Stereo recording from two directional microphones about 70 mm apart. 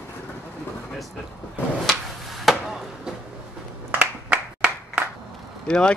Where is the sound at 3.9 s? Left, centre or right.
Centre.